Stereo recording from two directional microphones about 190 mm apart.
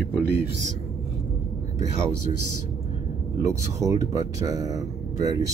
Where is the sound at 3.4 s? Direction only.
15° right (ahead or behind).